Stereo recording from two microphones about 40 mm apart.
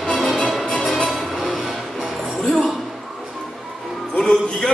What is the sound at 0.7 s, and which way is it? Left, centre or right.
Music, centre.